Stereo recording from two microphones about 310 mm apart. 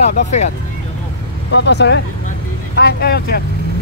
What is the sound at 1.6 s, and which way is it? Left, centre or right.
Speech, left.